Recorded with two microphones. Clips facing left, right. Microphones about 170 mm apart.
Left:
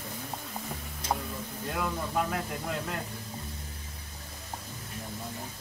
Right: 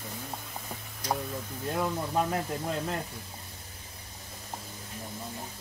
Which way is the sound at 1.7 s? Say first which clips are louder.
Right 2 dB; 25° right (ahead or behind).